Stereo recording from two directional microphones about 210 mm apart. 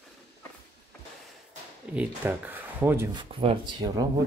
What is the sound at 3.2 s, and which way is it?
Speech, 25° right (ahead or behind).